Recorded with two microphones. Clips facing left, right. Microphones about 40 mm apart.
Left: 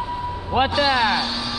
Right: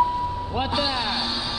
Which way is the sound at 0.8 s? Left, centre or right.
Left.